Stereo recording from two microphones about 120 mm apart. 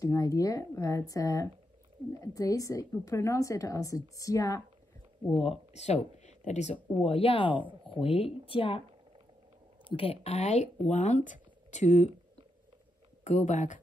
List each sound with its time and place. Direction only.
0.0 s a woman's voice: 30° left (ahead or behind)
5.7 s speech: 65° left (ahead or behind)
6.1 s a sound: 75° left (ahead or behind)
7.0 s speech: 50° left (ahead or behind)
9.8 s a woman's voice: 50° left (ahead or behind); by 12.1 s 75° left (ahead or behind)
13.2 s speech: 85° left